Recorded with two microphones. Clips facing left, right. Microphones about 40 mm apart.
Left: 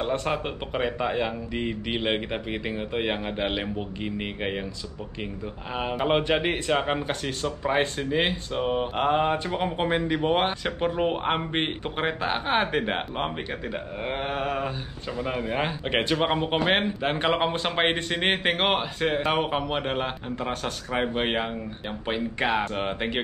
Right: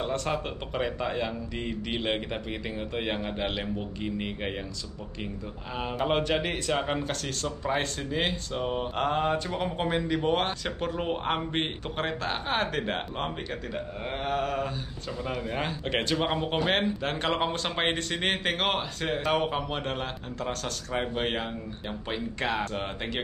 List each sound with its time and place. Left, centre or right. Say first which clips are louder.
0.0 s speech: left 3 dB; centre
5.8 s speech: left 3 dB; centre